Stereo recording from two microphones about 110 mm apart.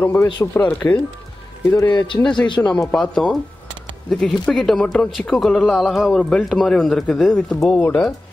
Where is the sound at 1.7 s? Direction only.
40° left (ahead or behind).